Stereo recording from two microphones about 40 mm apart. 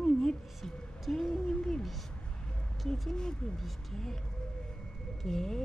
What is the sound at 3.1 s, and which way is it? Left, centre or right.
Speech, centre.